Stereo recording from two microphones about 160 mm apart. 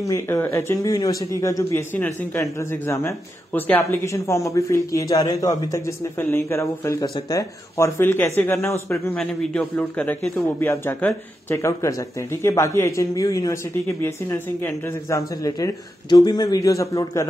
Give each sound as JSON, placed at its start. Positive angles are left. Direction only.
{"t": 0.0, "sound": "a man's voice", "side_deg": 20}
{"t": 9.1, "sound": "a man's voice", "side_deg": 5}